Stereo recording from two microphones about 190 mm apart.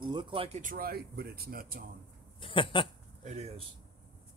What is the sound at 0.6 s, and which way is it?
Speech, 50° right (ahead or behind).